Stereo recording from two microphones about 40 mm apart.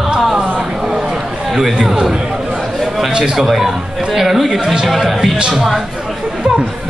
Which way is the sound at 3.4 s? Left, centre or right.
Centre.